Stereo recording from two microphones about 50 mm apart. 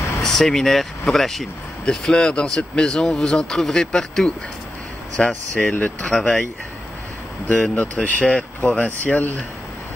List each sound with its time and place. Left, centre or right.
0.2 s speech: centre
1.9 s speech: centre
5.1 s speech: left
7.4 s speech: left